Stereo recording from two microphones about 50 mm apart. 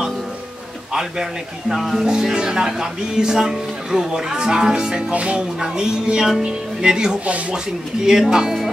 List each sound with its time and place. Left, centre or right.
1.7 s speech: centre
2.0 s speech: centre
5.1 s music: right
5.6 s speech: centre